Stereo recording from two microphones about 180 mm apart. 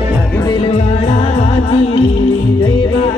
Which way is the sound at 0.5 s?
35° left (ahead or behind).